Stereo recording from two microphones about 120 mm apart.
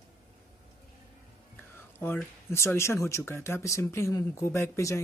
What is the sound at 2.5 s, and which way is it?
Speech, 20° left (ahead or behind).